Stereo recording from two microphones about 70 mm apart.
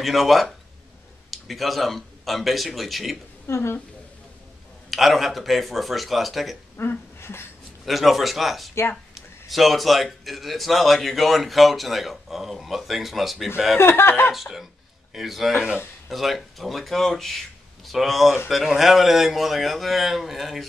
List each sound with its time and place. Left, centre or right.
0.0 s speech: centre
3.4 s a woman's voice: left
4.9 s speech: centre
6.8 s speech: left
7.8 s speech: centre
13.7 s speech: left
14.3 s speech: centre